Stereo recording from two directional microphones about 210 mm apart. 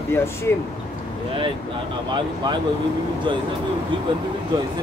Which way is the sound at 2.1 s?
20° right (ahead or behind).